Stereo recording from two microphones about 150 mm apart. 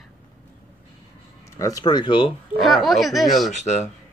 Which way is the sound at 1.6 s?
25° left (ahead or behind).